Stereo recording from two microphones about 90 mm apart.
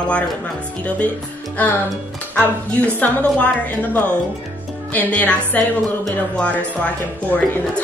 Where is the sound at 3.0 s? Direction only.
15° left (ahead or behind).